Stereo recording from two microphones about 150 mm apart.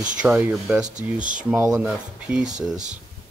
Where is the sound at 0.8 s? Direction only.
55° right (ahead or behind).